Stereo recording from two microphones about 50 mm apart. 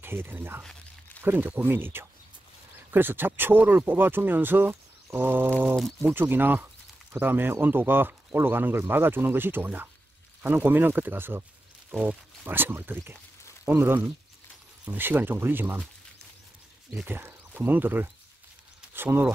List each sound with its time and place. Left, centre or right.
0.0 s speech: right
11.9 s speech: centre
12.4 s speech: right
16.9 s speech: right